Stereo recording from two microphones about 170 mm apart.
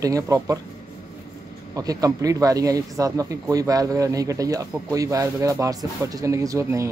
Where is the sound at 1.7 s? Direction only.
20° right (ahead or behind).